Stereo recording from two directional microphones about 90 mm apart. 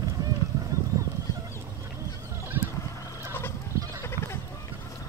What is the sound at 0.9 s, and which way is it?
Fowl, 40° right (ahead or behind).